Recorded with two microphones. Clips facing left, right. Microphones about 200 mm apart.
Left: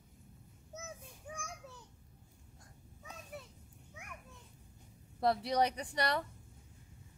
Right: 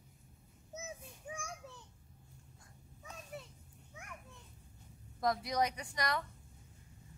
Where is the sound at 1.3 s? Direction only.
15° right (ahead or behind).